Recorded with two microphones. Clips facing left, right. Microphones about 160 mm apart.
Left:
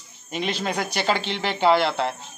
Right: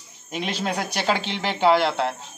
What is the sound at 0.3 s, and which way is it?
Speech, 5° right (ahead or behind).